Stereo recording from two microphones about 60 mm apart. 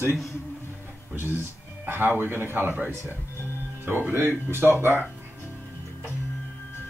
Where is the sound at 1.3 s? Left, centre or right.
Right.